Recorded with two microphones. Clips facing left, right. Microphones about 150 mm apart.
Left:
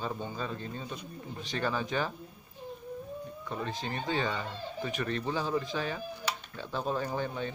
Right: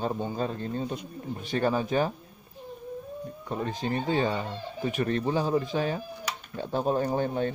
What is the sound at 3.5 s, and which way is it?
A man's voice, 45° right (ahead or behind).